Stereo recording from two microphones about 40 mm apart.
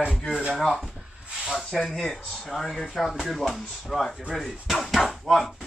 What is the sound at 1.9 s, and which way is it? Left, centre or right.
Speech, centre.